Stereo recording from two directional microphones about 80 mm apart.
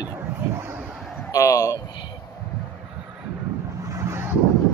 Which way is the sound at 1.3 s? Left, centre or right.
Left.